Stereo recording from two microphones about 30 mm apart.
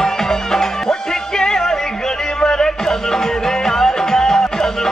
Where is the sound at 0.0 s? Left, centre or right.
Centre.